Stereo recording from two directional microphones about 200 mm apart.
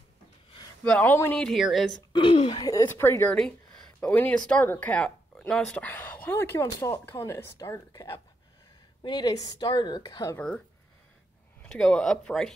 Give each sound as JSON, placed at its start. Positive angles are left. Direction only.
{"t": 0.8, "sound": "speech", "side_deg": 10}
{"t": 2.1, "sound": "a woman's voice", "side_deg": 25}
{"t": 11.6, "sound": "speech", "side_deg": 5}